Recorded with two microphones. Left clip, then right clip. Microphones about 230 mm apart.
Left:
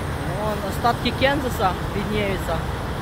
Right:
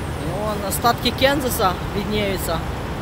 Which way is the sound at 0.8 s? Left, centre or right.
Centre.